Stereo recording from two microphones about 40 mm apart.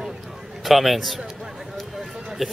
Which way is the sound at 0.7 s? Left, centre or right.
Centre.